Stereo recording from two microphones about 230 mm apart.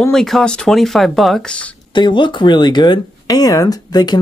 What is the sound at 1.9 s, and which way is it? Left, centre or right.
Speech, centre.